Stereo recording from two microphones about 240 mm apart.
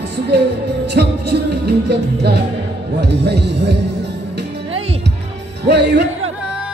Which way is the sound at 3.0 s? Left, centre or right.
Right.